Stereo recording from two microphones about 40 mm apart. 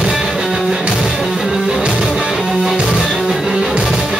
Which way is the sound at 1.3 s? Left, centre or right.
Centre.